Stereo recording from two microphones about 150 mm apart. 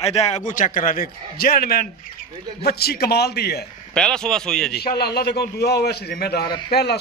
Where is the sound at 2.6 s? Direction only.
90° left.